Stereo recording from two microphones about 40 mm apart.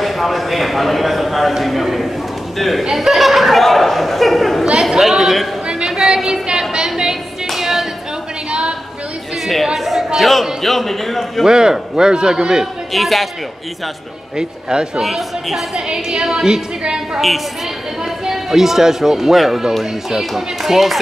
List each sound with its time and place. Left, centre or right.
0.0 s a man's voice: centre
4.9 s a man's voice: centre
5.7 s a sound: centre
7.4 s music: centre
8.5 s a sound: right
9.8 s a man's voice: centre
11.4 s a man's voice: centre
12.9 s a man's voice: centre
14.3 s a man's voice: right
15.0 s a man's voice: centre
15.7 s a man's voice: centre
18.2 s speech: centre